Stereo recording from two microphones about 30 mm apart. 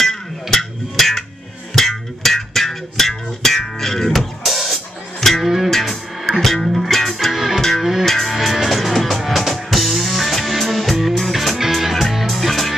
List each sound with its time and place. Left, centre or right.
0.0 s music: centre
4.1 s music: centre
5.2 s music: centre
6.7 s music: centre
7.3 s music: centre
8.0 s music: centre